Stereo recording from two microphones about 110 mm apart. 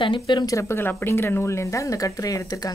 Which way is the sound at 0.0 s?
45° left (ahead or behind).